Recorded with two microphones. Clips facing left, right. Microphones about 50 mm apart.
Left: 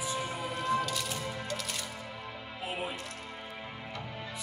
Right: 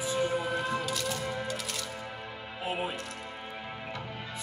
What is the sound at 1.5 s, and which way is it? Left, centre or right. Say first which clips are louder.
Music: right 1 dB; centre.